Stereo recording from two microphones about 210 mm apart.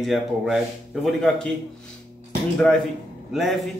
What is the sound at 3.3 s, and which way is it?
Speech, centre (ahead or behind).